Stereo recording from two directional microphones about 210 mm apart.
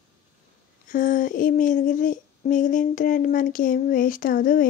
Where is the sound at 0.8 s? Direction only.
40° left (ahead or behind).